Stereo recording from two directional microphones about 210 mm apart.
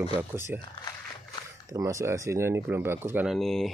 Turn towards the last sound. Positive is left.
turn(degrees=0)  # may be behind; listen again after turning